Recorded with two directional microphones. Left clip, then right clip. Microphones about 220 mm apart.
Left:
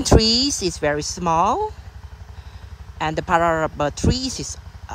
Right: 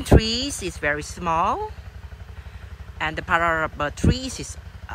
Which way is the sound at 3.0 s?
20° left (ahead or behind).